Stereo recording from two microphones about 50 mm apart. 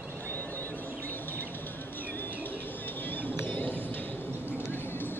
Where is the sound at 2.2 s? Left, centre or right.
Left.